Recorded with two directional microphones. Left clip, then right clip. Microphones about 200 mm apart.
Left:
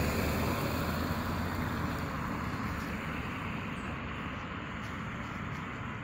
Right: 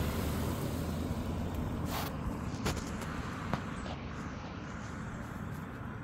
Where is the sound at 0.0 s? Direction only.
60° left (ahead or behind); by 3.3 s 20° left (ahead or behind).